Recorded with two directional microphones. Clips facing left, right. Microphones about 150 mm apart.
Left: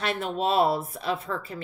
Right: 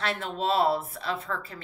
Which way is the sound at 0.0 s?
15° left (ahead or behind).